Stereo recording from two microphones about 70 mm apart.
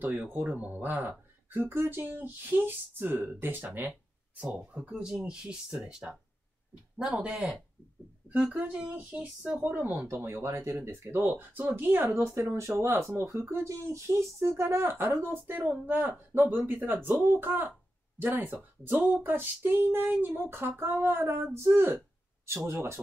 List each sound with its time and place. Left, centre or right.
0.0 s speech: right
4.4 s speech: centre; by 22.9 s right